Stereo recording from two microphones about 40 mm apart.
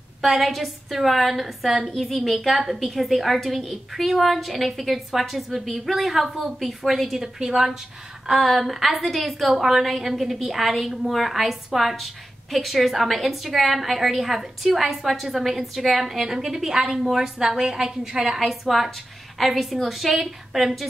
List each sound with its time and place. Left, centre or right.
0.2 s a woman's voice: centre
8.3 s a woman's voice: centre
18.4 s a woman's voice: centre